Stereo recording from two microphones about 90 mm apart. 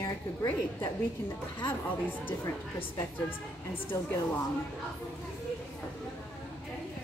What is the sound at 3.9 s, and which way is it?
Speech, 45° left (ahead or behind).